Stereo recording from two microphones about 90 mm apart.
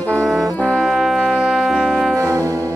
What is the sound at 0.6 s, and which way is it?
Brass instrument, 5° left (ahead or behind).